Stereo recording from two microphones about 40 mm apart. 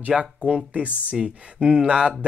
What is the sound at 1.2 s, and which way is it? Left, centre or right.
Speech, centre.